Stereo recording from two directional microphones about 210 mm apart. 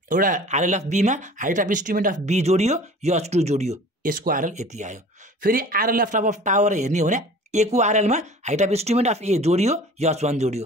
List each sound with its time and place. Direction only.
0.1 s speech: 40° right (ahead or behind)